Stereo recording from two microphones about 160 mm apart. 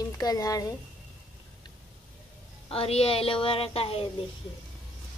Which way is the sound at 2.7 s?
40° left (ahead or behind).